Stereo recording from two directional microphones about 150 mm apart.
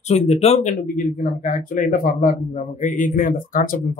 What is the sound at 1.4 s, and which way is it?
A man's voice, 65° left (ahead or behind).